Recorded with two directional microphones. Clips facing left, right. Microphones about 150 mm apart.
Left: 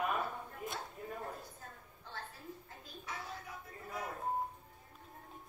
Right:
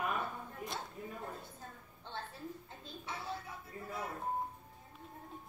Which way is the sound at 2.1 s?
25° right (ahead or behind).